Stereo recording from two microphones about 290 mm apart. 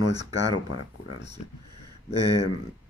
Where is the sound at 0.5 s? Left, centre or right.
Left.